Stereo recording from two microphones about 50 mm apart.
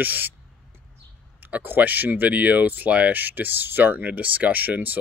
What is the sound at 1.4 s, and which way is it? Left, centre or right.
Speech, right.